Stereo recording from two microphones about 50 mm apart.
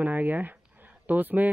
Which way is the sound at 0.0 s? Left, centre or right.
Right.